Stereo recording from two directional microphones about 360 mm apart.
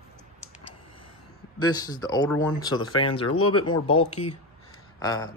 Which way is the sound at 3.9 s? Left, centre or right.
Centre.